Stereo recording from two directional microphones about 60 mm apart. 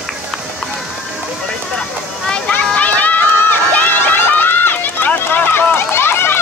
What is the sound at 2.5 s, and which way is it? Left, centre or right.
Run, left.